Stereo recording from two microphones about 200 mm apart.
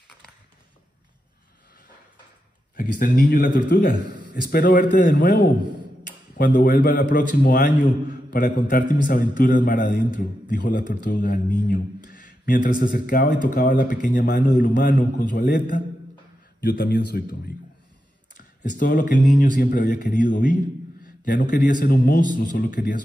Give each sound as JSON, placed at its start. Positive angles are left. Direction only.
{"t": 2.7, "sound": "a man's voice", "side_deg": 45}
{"t": 12.1, "sound": "a sound", "side_deg": 40}
{"t": 12.9, "sound": "a man's voice", "side_deg": 45}
{"t": 16.6, "sound": "a man's voice", "side_deg": 50}
{"t": 19.3, "sound": "a man's voice", "side_deg": 40}